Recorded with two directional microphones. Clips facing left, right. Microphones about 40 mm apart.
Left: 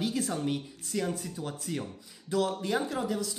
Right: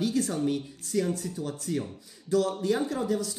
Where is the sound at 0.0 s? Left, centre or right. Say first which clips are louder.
Right 4 dB; left.